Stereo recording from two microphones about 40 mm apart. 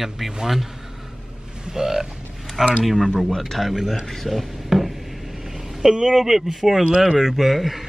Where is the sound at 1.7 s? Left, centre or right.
Centre.